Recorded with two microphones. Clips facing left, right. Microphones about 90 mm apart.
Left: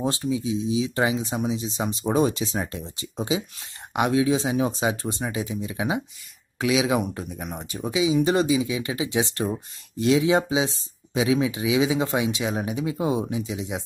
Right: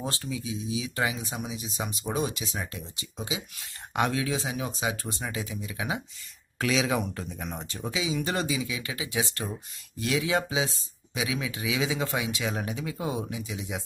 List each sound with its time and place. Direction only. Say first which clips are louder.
0.0 s speech: left 8 dB; 20° left (ahead or behind)
3.9 s speech: left 6 dB; 20° left (ahead or behind)
6.6 s speech: left 4 dB; 10° left (ahead or behind)